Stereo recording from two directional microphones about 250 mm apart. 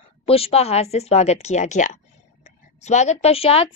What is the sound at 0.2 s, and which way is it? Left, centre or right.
A woman's voice, left.